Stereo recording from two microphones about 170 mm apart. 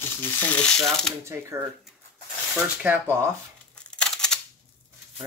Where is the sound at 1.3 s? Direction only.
15° right (ahead or behind).